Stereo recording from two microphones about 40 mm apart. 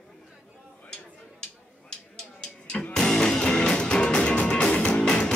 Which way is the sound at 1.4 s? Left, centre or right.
Centre.